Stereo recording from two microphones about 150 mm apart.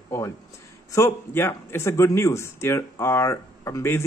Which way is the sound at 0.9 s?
15° left (ahead or behind).